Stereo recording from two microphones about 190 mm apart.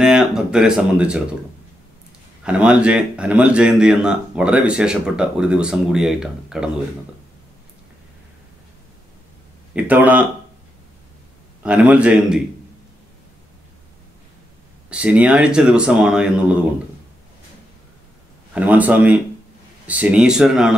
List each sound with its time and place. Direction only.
0.0 s speech: 5° right (ahead or behind)
2.4 s speech: 5° right (ahead or behind)
9.8 s a man's voice: 10° right (ahead or behind)
11.6 s a man's voice: 5° right (ahead or behind)
14.9 s speech: 5° right (ahead or behind)
18.5 s a man's voice: 10° right (ahead or behind)